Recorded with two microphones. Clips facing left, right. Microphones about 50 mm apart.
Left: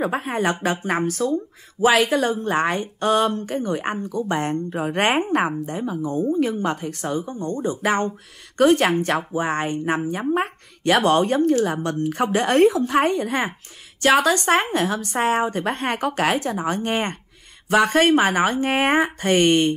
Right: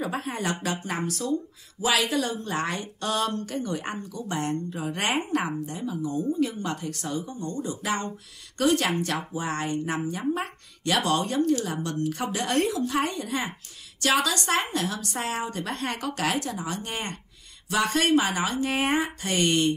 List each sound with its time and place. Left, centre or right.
0.0 s speech: left